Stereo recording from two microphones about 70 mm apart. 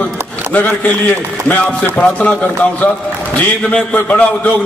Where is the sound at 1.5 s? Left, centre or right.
Left.